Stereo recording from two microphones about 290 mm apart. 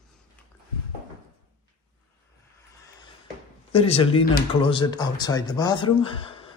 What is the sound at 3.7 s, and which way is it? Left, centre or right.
Speech, centre.